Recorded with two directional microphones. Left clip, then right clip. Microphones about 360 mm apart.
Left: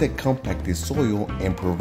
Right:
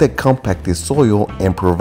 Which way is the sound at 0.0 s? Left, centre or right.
Right.